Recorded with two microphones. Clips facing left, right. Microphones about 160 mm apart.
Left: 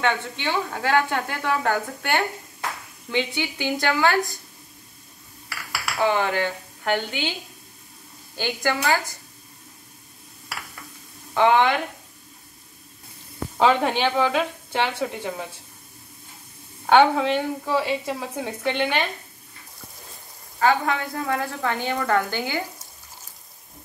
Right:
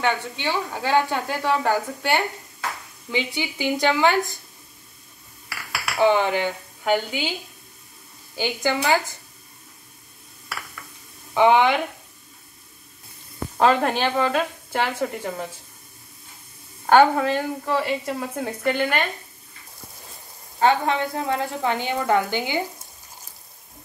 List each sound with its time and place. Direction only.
0.0 s speech: 10° right (ahead or behind)
5.9 s speech: 20° right (ahead or behind)
8.4 s speech: 15° right (ahead or behind)
11.3 s speech: 15° right (ahead or behind)
13.6 s a woman's voice: centre (ahead or behind)
16.8 s a woman's voice: centre (ahead or behind)
20.5 s a woman's voice: 25° right (ahead or behind)